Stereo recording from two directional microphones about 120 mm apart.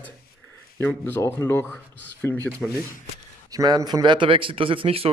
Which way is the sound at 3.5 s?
35° right (ahead or behind).